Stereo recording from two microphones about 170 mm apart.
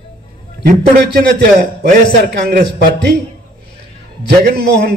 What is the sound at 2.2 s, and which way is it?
Speech, 65° right (ahead or behind).